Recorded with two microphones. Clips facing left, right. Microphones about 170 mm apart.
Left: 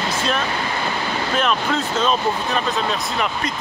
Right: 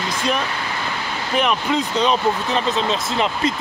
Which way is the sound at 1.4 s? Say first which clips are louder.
Right 3 dB; 15° right (ahead or behind).